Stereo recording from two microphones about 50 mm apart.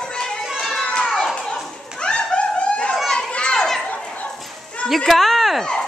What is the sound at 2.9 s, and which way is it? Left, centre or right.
Children playing, centre.